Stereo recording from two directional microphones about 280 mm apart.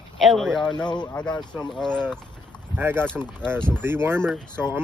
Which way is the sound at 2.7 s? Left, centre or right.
Centre.